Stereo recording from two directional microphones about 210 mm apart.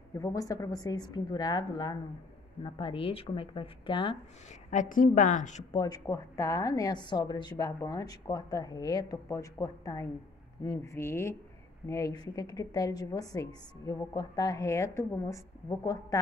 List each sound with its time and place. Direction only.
0.2 s speech: 15° left (ahead or behind); by 5.6 s 35° left (ahead or behind)
5.7 s a woman's voice: 20° left (ahead or behind)